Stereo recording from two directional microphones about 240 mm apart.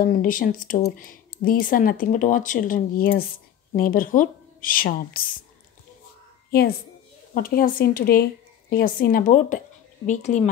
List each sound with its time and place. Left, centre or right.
0.0 s speech: left
7.3 s speech: left